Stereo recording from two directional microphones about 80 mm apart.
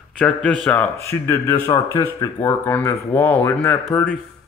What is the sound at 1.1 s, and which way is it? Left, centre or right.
Speech, left.